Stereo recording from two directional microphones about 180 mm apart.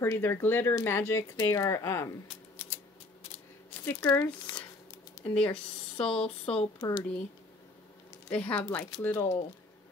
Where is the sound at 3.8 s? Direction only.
10° left (ahead or behind).